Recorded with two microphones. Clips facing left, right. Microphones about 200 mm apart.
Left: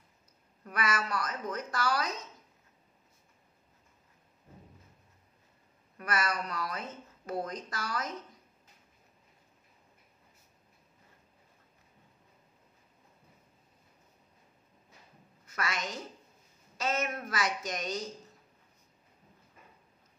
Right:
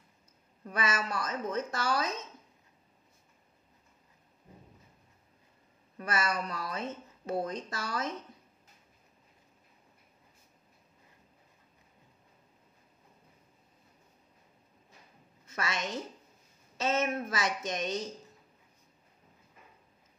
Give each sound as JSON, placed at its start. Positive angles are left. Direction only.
{"t": 0.7, "sound": "speech", "side_deg": -25}
{"t": 5.9, "sound": "speech", "side_deg": -25}
{"t": 15.4, "sound": "a woman's voice", "side_deg": -25}